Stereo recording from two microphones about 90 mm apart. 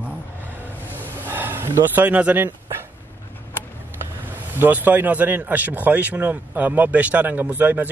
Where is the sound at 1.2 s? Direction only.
20° right (ahead or behind).